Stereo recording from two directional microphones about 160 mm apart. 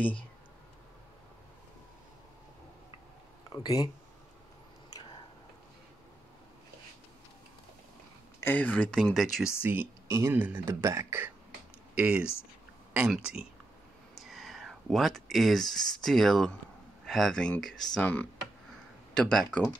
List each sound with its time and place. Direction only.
3.5 s speech: 25° left (ahead or behind)
8.4 s speech: 10° left (ahead or behind)
9.6 s speech: 10° right (ahead or behind); by 19.7 s 5° left (ahead or behind)